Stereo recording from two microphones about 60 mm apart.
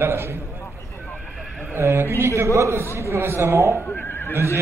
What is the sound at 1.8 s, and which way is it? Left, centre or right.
A man's voice, right.